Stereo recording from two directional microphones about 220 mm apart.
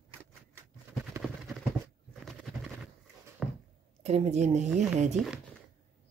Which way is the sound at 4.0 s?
30° right (ahead or behind).